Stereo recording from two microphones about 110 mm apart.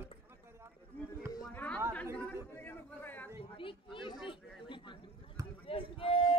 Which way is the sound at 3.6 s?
50° left (ahead or behind).